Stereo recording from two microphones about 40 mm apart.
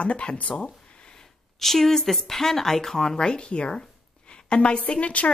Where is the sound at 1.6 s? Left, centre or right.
Centre.